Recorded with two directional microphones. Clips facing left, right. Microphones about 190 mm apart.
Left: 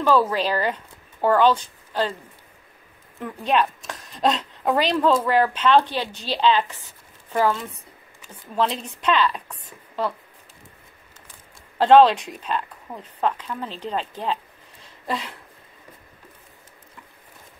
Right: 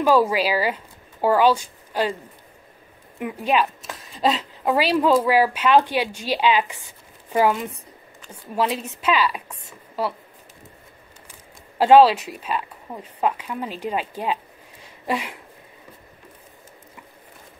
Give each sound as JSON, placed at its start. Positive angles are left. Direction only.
{"t": 0.0, "sound": "speech", "side_deg": -10}
{"t": 3.2, "sound": "a woman's voice", "side_deg": -10}
{"t": 8.5, "sound": "a woman's voice", "side_deg": -5}
{"t": 11.8, "sound": "a woman's voice", "side_deg": -5}